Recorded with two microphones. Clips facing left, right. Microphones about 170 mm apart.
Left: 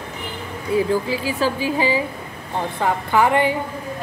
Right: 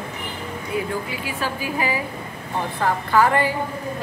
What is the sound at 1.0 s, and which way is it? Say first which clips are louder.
A woman's voice: left 6 dB; 30° left (ahead or behind).